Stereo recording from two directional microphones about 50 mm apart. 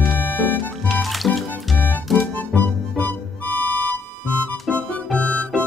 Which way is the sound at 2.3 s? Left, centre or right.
Left.